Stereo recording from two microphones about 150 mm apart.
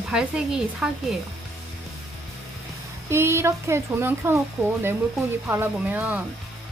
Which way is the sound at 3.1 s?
15° right (ahead or behind).